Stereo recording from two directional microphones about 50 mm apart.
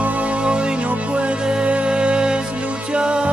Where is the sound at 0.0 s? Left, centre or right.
Right.